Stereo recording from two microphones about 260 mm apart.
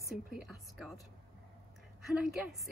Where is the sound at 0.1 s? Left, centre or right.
Centre.